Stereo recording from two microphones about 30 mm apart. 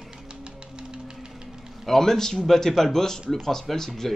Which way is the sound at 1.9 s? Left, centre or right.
Centre.